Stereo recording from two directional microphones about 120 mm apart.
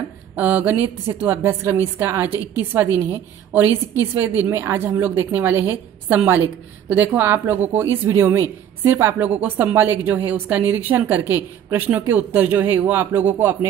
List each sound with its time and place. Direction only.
0.4 s a woman's voice: 15° right (ahead or behind)